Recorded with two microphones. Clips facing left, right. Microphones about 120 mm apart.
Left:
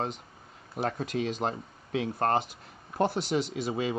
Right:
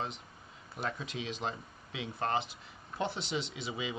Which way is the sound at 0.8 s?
50° left (ahead or behind).